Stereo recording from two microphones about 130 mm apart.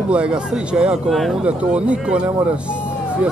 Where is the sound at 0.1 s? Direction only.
10° right (ahead or behind).